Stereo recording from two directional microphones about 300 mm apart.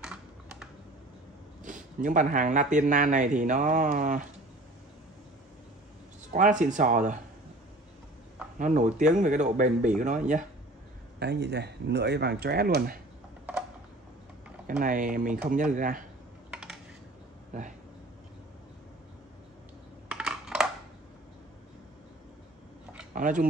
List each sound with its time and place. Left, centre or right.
0.0 s typing: centre
1.6 s speech: right
6.3 s speech: right
8.5 s speech: right
14.8 s speech: right
16.4 s typing: centre
20.1 s a sound: centre
23.1 s speech: right